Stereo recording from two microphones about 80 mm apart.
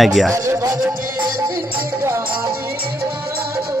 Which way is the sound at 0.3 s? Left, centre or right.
Right.